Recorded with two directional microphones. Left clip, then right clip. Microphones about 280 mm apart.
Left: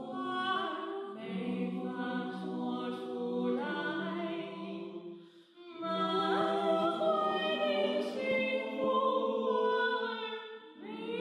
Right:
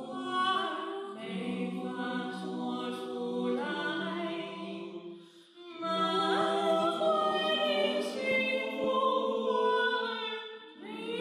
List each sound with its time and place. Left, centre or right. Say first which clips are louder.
0.2 s music: right 4 dB; centre
2.7 s choir: right 2 dB; centre
3.2 s choir: even; left
3.4 s a capella: right 3 dB; centre
5.8 s music: right 3 dB; centre
9.0 s choir: right 2 dB; centre
9.5 s music: right 3 dB; centre